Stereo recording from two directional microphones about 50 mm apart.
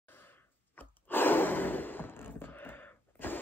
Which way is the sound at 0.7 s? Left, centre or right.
Left.